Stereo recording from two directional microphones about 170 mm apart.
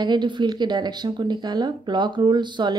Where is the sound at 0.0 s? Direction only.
25° right (ahead or behind).